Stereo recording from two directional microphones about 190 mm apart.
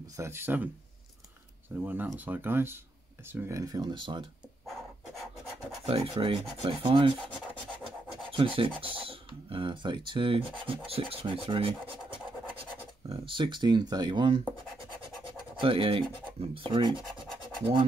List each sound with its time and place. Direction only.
0.2 s speech: 10° right (ahead or behind)
1.8 s speech: 10° right (ahead or behind); by 4.3 s 25° right (ahead or behind)
5.9 s speech: 30° right (ahead or behind)
8.5 s speech: 25° right (ahead or behind)
15.6 s speech: 30° right (ahead or behind)